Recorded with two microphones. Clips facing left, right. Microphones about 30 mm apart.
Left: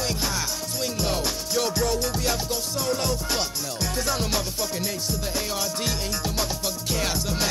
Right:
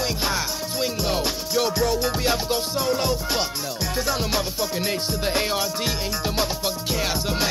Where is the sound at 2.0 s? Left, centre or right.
Right.